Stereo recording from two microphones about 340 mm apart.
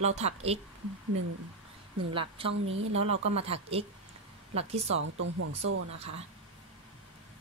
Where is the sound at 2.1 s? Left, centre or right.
Centre.